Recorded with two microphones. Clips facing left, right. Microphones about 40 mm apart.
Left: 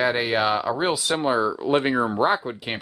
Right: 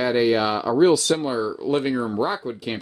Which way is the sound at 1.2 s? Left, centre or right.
Left.